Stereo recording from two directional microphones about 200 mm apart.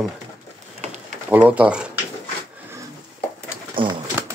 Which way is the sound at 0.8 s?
35° right (ahead or behind).